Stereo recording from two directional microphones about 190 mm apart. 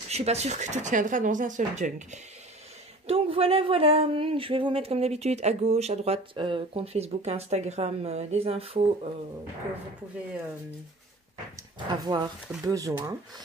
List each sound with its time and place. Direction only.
0.1 s speech: 35° right (ahead or behind)
11.9 s speech: 20° right (ahead or behind)